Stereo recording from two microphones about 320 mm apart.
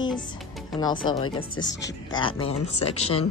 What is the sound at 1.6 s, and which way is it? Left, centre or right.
Speech, left.